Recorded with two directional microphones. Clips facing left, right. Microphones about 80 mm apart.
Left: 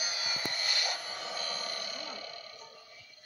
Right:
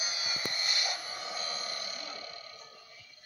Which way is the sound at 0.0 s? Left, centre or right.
Centre.